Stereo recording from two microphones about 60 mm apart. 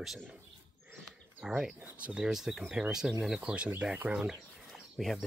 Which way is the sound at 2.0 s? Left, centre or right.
Right.